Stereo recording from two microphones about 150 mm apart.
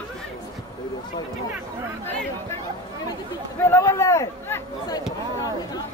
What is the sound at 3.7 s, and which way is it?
Speech, 20° left (ahead or behind).